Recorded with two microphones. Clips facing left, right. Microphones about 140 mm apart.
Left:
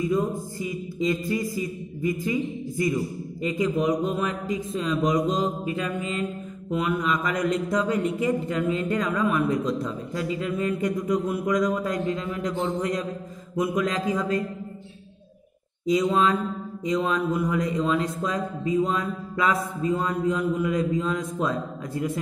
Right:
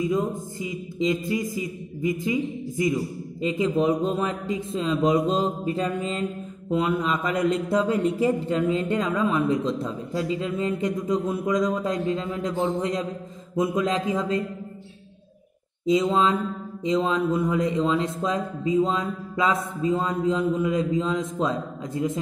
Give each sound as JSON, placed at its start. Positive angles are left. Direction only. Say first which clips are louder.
{"t": 0.0, "sound": "mantra", "louder": "even", "side_deg": -20}
{"t": 15.8, "sound": "mantra", "louder": "right 1 dB", "side_deg": -25}